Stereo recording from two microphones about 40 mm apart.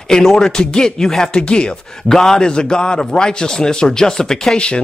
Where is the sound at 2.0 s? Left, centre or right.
Centre.